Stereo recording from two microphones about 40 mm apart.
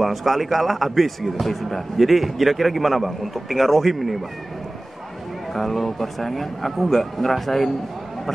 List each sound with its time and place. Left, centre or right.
0.0 s speech: centre
5.5 s speech: centre